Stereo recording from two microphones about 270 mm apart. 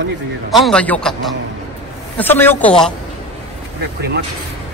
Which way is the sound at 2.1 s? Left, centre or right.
Centre.